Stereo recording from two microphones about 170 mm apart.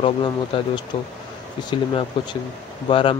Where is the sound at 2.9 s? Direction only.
30° left (ahead or behind).